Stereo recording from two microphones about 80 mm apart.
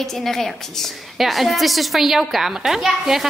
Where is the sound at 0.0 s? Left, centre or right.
Centre.